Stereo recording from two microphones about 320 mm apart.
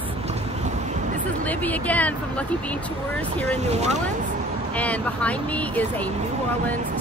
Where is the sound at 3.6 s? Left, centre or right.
Centre.